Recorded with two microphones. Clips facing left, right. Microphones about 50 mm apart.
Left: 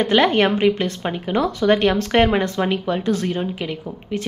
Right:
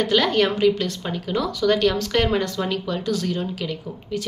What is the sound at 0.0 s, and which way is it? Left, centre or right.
A woman's voice, left.